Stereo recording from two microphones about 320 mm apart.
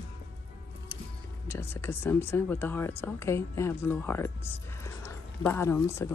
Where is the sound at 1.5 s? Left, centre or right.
Centre.